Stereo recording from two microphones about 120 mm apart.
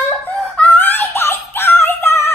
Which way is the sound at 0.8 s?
20° left (ahead or behind).